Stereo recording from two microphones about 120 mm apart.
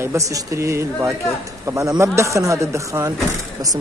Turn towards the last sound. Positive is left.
turn(degrees=-25)  # may be behind; listen again after turning